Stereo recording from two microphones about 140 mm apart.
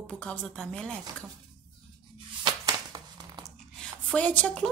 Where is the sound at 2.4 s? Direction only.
30° right (ahead or behind).